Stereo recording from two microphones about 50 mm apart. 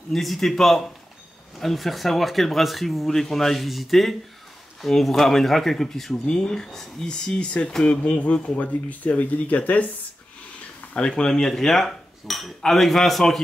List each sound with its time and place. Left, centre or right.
0.1 s speech: centre
6.1 s cutlery: centre
7.8 s speech: left
10.9 s cutlery: centre